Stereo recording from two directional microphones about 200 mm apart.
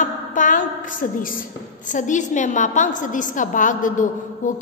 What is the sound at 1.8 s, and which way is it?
A woman's voice, 40° left (ahead or behind).